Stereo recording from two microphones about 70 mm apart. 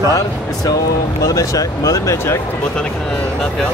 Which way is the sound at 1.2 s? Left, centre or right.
Left.